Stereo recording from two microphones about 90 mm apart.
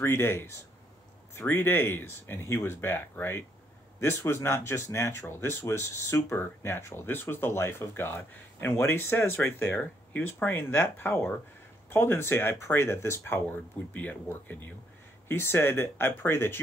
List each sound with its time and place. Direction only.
0.0 s speech: 25° left (ahead or behind)